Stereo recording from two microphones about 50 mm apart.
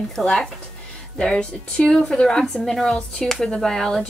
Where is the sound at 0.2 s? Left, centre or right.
Centre.